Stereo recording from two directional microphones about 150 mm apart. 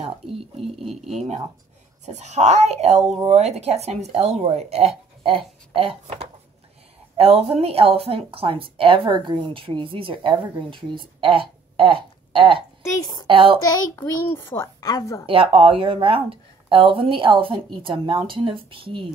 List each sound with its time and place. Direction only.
0.8 s speech: centre (ahead or behind)
2.1 s speech: 50° right (ahead or behind); by 12.6 s 35° right (ahead or behind)
13.0 s a woman's voice: 30° left (ahead or behind)
13.3 s speech: 35° right (ahead or behind)
13.9 s a woman's voice: 15° left (ahead or behind)
15.2 s speech: 40° right (ahead or behind)